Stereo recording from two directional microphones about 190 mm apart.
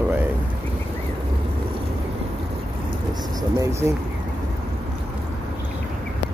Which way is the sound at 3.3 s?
15° right (ahead or behind).